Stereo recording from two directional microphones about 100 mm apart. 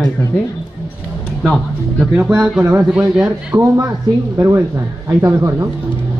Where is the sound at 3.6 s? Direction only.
30° right (ahead or behind).